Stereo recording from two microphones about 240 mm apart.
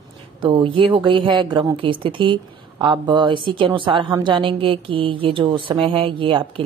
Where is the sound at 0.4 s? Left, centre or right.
Right.